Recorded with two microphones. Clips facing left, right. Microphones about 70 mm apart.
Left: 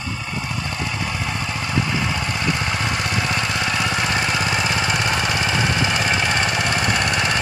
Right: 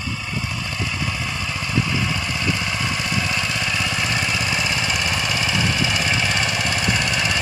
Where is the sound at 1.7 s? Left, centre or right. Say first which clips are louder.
Even; left.